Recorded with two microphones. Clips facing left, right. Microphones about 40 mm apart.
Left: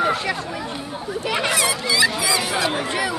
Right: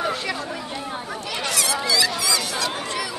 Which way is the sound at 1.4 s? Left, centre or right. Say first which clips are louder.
Even; centre.